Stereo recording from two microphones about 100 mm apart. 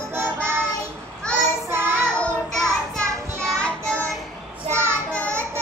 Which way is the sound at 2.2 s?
5° left (ahead or behind).